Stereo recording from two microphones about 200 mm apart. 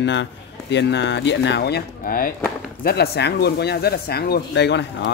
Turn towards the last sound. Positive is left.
turn(degrees=55)  # may be behind; listen again after turning